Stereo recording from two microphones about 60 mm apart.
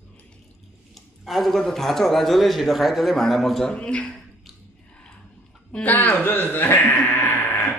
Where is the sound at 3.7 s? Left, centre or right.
Centre.